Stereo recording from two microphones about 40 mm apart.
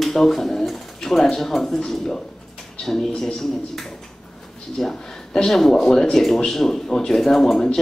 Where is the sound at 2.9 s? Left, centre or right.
Left.